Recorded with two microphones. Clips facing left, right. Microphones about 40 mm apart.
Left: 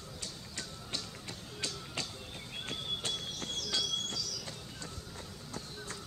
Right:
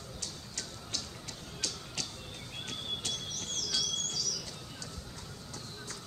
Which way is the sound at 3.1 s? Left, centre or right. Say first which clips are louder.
Even; centre.